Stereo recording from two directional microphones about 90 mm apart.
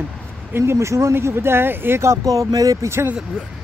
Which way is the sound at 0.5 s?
25° right (ahead or behind).